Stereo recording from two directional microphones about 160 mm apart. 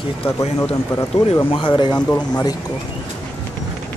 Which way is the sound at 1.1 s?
45° left (ahead or behind).